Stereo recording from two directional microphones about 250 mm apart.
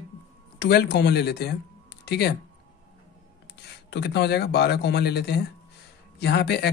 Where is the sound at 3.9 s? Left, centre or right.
Left.